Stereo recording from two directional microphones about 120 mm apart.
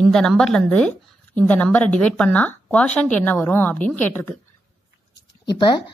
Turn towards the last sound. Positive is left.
turn(degrees=35)  # may be behind; listen again after turning